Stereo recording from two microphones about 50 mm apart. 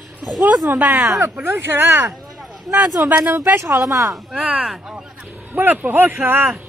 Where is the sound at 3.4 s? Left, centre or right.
Right.